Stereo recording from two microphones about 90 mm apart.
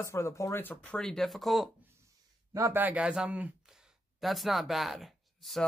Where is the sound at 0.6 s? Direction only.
15° left (ahead or behind); by 1.7 s centre (ahead or behind).